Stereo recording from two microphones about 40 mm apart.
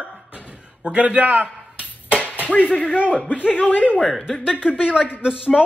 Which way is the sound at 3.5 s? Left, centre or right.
Left.